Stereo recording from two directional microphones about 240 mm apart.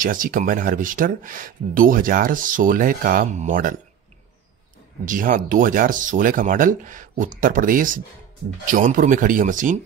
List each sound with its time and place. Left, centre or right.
0.0 s speech: right
5.0 s speech: right